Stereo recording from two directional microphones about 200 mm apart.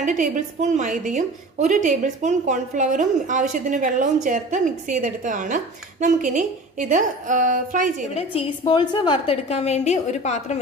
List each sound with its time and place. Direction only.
0.0 s a woman's voice: 40° right (ahead or behind)
8.1 s a woman's voice: 30° left (ahead or behind)